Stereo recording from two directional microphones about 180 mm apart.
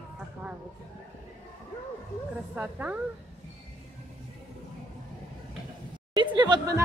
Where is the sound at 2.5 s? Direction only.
5° right (ahead or behind).